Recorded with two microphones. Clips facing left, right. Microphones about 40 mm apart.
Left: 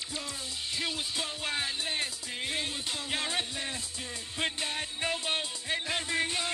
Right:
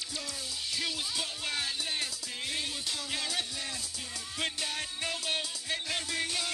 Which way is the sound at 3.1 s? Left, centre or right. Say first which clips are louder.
Left 3 dB; left.